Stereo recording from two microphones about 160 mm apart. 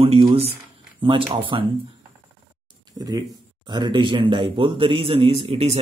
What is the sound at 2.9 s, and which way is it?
A man's voice, 25° right (ahead or behind).